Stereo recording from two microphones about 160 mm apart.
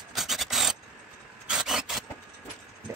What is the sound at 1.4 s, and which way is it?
Vehicle, centre (ahead or behind).